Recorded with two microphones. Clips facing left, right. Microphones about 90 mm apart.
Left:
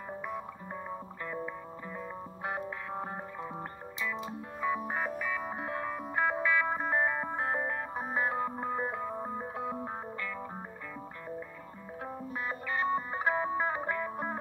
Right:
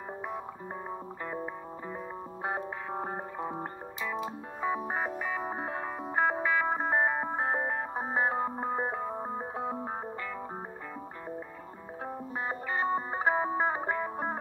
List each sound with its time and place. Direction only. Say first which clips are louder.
1.2 s music: right 1 dB; 30° right (ahead or behind)
12.0 s music: right 2 dB; 30° right (ahead or behind)